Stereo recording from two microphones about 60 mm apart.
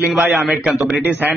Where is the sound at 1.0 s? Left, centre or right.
Right.